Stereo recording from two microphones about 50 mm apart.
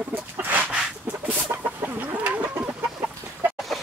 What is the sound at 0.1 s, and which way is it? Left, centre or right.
Dog, right.